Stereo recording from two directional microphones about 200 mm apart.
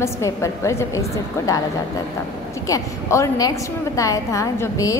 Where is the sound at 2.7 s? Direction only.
15° left (ahead or behind).